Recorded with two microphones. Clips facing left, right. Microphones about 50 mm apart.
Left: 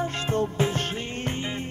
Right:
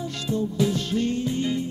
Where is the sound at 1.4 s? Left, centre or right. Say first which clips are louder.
Right 6 dB; left.